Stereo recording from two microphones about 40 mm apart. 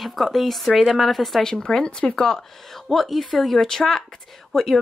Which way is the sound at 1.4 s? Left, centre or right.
Centre.